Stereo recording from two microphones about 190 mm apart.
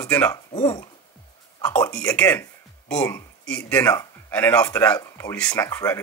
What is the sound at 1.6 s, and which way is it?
Speech, 5° left (ahead or behind).